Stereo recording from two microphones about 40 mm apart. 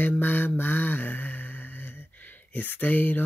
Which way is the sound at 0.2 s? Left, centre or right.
Left.